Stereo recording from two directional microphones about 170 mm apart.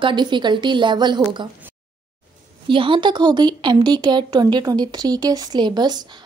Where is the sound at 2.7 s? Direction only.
30° right (ahead or behind).